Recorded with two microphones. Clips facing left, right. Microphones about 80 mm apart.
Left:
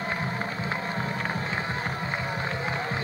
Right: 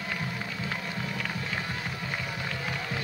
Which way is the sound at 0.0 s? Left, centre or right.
Left.